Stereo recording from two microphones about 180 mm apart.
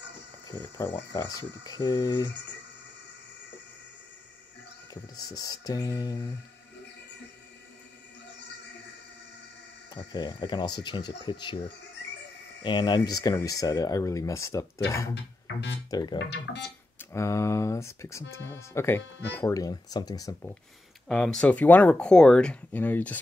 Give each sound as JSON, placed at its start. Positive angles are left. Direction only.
{"t": 0.5, "sound": "speech", "side_deg": 20}
{"t": 4.9, "sound": "speech", "side_deg": 20}
{"t": 9.9, "sound": "speech", "side_deg": 25}
{"t": 12.6, "sound": "speech", "side_deg": 25}
{"t": 15.4, "sound": "speech", "side_deg": 80}
{"t": 15.9, "sound": "speech", "side_deg": 20}
{"t": 16.2, "sound": "speech", "side_deg": 75}
{"t": 17.0, "sound": "speech", "side_deg": 15}
{"t": 21.1, "sound": "speech", "side_deg": 5}